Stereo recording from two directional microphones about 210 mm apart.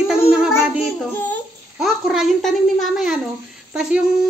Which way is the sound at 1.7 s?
Centre (ahead or behind).